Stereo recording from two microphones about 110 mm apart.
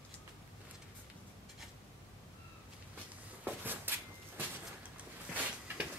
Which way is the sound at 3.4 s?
15° right (ahead or behind).